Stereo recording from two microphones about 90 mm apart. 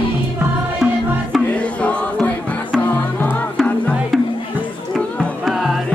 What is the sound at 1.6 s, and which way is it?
Music, 15° left (ahead or behind).